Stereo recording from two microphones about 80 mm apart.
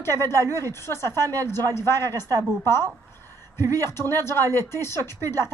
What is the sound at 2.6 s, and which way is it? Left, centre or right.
Speech, left.